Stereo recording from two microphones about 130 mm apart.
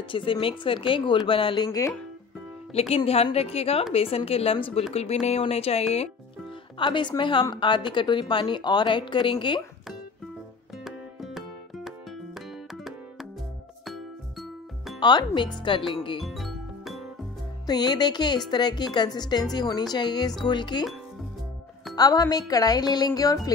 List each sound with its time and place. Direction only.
0.1 s a woman's voice: 40° left (ahead or behind)
2.7 s speech: 50° left (ahead or behind)
6.8 s a woman's voice: 35° left (ahead or behind)
10.8 s music: centre (ahead or behind)
15.0 s a woman's voice: 35° left (ahead or behind)
16.2 s music: centre (ahead or behind)
17.6 s a woman's voice: 30° left (ahead or behind)
21.9 s speech: 30° left (ahead or behind)